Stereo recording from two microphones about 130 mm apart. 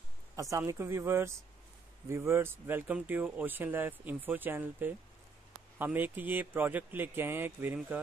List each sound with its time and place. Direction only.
0.4 s speech: 25° right (ahead or behind)